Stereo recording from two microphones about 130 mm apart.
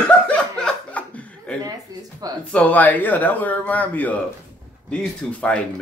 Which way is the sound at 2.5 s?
10° left (ahead or behind).